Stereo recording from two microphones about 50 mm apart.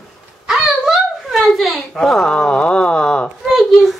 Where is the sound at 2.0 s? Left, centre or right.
Centre.